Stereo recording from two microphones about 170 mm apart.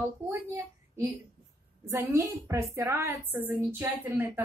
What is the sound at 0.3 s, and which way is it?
A woman's voice, 20° right (ahead or behind).